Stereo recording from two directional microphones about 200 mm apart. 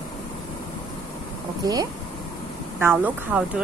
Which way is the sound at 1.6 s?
20° right (ahead or behind).